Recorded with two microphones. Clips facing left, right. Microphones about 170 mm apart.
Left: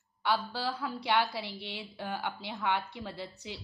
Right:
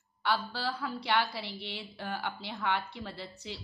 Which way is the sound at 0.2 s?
15° left (ahead or behind).